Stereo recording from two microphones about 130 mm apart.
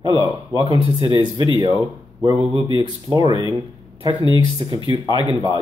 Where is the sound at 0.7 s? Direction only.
40° right (ahead or behind).